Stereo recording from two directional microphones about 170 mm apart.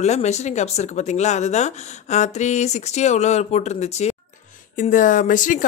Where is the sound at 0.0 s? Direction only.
40° left (ahead or behind).